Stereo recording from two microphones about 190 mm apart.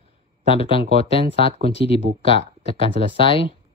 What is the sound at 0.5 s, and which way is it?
Speech, 30° left (ahead or behind).